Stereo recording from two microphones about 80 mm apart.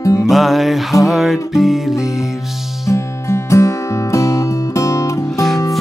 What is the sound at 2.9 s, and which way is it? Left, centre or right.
Music, left.